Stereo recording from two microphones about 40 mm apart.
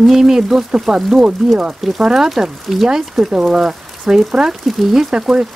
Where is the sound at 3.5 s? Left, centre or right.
Centre.